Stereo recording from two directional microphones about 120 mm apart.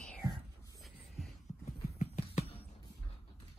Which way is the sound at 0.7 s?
Centre (ahead or behind).